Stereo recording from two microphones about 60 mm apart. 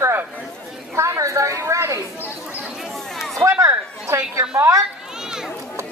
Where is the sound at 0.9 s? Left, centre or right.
Right.